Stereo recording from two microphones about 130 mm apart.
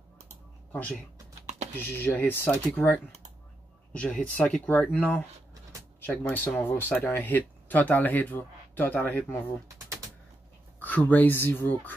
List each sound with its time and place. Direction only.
0.7 s speech: 10° left (ahead or behind)
1.4 s typing: 60° right (ahead or behind)
1.8 s speech: 15° left (ahead or behind)
10.8 s speech: 15° left (ahead or behind)